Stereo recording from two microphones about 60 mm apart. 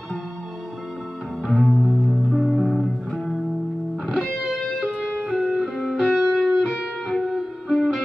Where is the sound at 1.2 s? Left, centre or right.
Centre.